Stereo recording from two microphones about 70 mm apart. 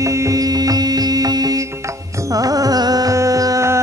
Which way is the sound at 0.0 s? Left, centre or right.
Right.